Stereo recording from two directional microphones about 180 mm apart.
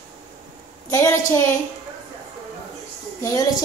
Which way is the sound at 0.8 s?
15° left (ahead or behind).